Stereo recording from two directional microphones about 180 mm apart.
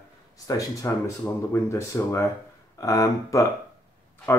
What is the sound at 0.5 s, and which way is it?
Speech, 15° left (ahead or behind).